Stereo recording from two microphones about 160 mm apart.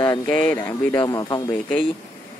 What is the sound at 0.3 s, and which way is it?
Speech, 10° left (ahead or behind).